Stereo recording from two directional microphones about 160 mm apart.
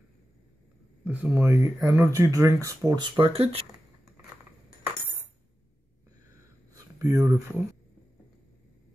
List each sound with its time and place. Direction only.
1.0 s speech: 10° right (ahead or behind)
3.2 s speech: 35° right (ahead or behind)
6.7 s speech: 20° right (ahead or behind)